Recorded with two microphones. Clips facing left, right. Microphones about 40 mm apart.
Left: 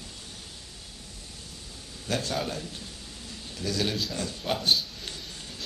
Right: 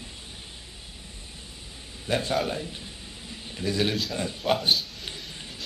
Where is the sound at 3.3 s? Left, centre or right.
Right.